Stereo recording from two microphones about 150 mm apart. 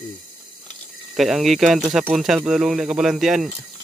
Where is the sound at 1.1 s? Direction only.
Centre (ahead or behind).